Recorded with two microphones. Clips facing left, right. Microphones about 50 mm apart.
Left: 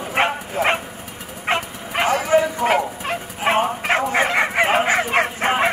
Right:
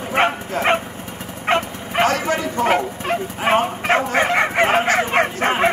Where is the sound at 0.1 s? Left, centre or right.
Centre.